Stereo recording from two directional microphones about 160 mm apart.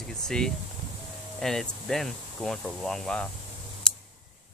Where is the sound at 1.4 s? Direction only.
Centre (ahead or behind).